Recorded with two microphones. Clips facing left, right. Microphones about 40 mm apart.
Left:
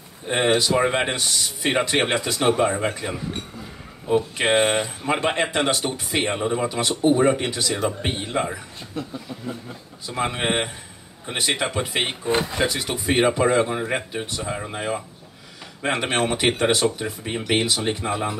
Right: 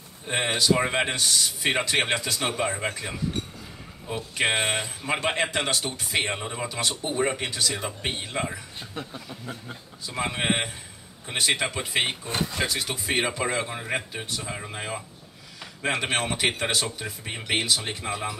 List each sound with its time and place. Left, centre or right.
0.3 s speech: centre
4.4 s speech: centre
10.0 s speech: centre
12.3 s speech: left
12.6 s speech: centre